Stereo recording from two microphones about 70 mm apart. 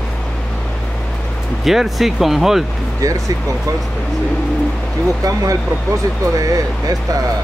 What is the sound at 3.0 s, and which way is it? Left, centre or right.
Speech, right.